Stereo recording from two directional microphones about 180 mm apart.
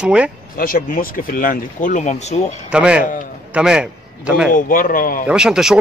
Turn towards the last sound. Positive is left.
turn(degrees=-5)  # may be behind; listen again after turning